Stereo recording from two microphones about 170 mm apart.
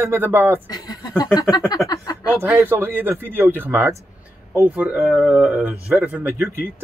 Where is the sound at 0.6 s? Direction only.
25° left (ahead or behind).